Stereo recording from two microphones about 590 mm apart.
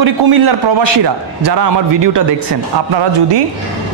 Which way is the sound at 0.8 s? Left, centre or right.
Right.